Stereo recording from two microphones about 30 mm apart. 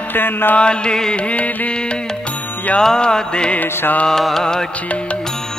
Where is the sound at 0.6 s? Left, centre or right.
Left.